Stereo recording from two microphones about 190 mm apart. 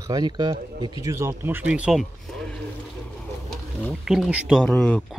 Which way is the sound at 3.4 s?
Centre (ahead or behind).